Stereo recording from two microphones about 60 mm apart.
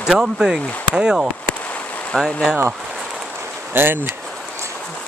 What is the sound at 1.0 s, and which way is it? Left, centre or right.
Speech, centre.